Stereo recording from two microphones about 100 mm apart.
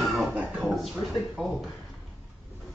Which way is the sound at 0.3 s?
15° right (ahead or behind).